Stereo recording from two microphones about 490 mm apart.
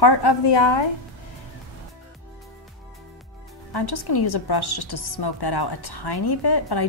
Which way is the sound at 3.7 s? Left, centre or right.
Left.